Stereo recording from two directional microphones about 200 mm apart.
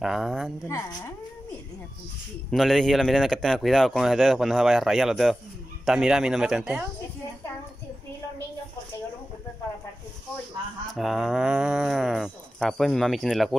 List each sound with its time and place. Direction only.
0.0 s speech: centre (ahead or behind)
0.7 s speech: 15° left (ahead or behind)
2.5 s speech: centre (ahead or behind)
11.0 s speech: centre (ahead or behind)